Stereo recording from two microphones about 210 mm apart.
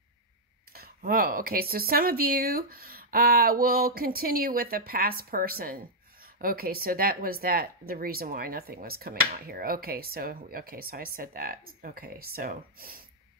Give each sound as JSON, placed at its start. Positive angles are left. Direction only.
{"t": 0.7, "sound": "speech", "side_deg": -45}